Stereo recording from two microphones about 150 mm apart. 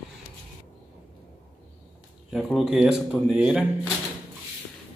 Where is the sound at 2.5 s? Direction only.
5° right (ahead or behind).